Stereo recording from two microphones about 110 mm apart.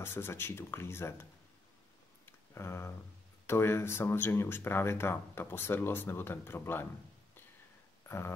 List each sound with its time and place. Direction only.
0.0 s speech: 20° left (ahead or behind)
2.2 s a sound: 25° left (ahead or behind)
3.4 s speech: 20° left (ahead or behind)